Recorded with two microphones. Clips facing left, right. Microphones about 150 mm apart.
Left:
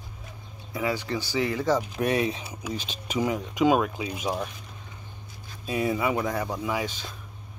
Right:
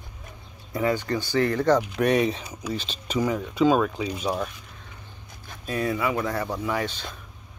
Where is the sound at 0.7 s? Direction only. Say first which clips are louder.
Right 4 dB; 5° left (ahead or behind).